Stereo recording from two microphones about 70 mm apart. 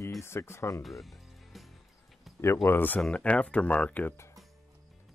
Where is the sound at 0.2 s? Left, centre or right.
Left.